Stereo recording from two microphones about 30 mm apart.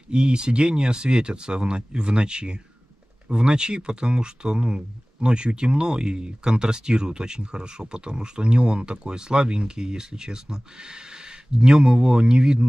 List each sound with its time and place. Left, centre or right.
0.1 s speech: right